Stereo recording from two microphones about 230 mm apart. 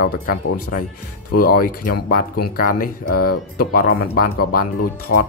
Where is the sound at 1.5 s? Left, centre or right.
Left.